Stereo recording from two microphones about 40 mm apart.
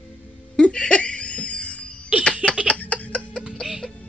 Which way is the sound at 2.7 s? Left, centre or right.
Left.